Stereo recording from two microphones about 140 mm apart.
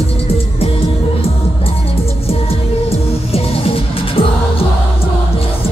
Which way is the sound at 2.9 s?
45° left (ahead or behind).